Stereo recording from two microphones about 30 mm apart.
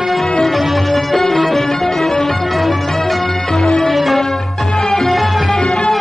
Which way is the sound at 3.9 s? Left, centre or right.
Centre.